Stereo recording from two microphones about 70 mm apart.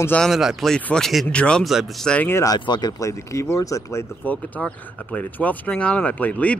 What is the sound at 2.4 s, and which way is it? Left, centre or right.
Speech, left.